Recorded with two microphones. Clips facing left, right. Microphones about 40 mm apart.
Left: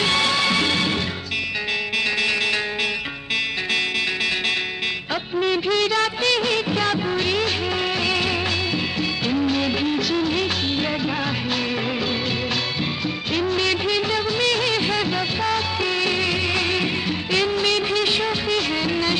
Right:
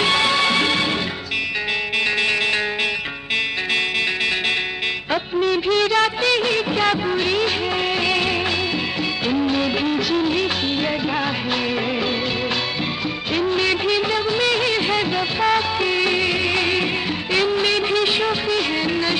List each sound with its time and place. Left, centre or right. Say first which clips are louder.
0.0 s music: right 2 dB; centre
5.5 s music of bollywood: right 2 dB; centre
9.3 s music of bollywood: right 2 dB; centre
13.3 s music of bollywood: right 2 dB; centre
15.8 s music: right 3 dB; centre